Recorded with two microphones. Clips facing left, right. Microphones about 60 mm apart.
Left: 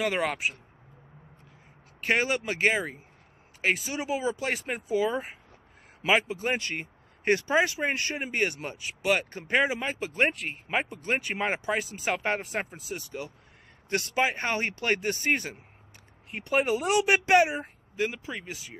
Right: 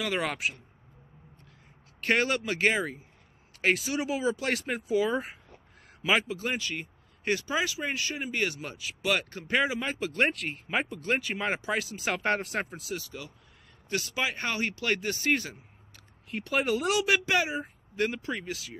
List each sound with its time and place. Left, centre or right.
2.0 s speech: centre
4.7 s speech: left
5.0 s speech: centre
6.0 s speech: left
6.6 s speech: left; by 10.9 s centre
10.9 s speech: centre
12.9 s speech: left
17.9 s speech: centre